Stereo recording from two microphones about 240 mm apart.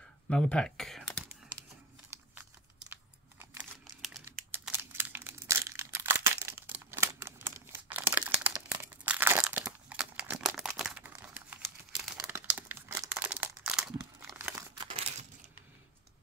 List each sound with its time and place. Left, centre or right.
0.3 s speech: centre
2.9 s computer keyboard: centre
14.8 s crumpling: right